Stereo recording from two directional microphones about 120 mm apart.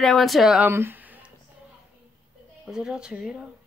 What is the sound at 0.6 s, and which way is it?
Speech, 20° right (ahead or behind).